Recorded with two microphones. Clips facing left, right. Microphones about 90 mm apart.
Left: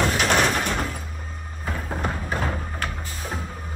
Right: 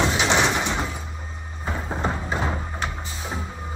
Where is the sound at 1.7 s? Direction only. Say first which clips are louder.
Right 2 dB; 20° right (ahead or behind).